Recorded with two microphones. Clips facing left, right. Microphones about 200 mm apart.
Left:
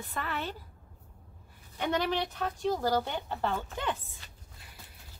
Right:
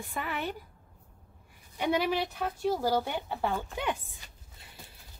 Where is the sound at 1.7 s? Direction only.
10° right (ahead or behind).